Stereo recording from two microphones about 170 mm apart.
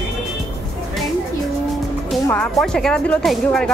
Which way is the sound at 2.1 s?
5° left (ahead or behind).